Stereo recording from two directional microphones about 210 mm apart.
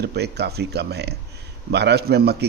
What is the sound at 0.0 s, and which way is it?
A man's voice, 50° right (ahead or behind).